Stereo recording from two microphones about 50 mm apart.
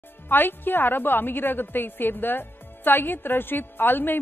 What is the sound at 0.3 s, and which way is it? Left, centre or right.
A woman's voice, left.